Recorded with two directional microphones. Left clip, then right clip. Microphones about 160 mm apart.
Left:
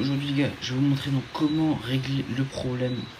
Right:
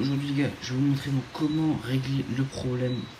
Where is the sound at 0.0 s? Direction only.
5° left (ahead or behind).